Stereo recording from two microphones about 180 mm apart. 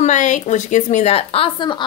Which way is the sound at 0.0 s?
45° left (ahead or behind).